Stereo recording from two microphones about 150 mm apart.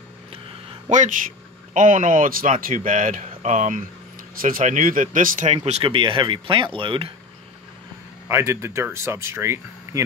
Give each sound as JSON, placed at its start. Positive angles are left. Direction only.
{"t": 0.8, "sound": "speech", "side_deg": -55}
{"t": 4.4, "sound": "speech", "side_deg": -65}
{"t": 5.7, "sound": "speech", "side_deg": -40}
{"t": 8.3, "sound": "speech", "side_deg": -15}